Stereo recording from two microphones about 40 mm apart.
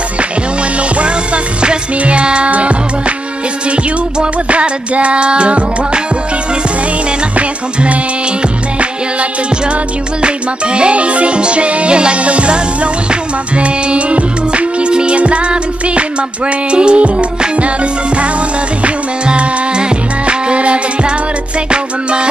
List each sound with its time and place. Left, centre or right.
0.7 s music: right
7.1 s music: right